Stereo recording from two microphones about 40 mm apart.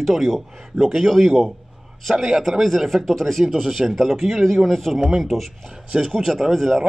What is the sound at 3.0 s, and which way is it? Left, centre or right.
Speech, centre.